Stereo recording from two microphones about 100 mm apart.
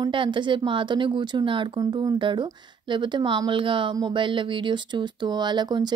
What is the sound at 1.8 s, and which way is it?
Speech, 45° right (ahead or behind).